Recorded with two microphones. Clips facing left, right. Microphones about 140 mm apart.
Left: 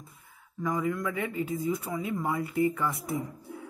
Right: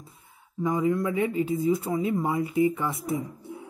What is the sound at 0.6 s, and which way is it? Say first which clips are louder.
Speech: right 5 dB; 25° right (ahead or behind).